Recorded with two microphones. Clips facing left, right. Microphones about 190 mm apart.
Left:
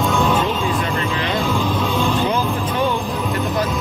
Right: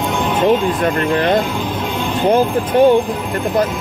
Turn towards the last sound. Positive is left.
turn(degrees=-55)  # may be behind; listen again after turning